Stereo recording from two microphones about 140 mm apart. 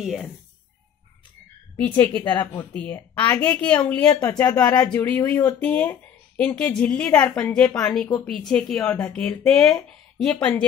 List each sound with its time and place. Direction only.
0.0 s a woman's voice: centre (ahead or behind)
2.0 s a woman's voice: 15° left (ahead or behind)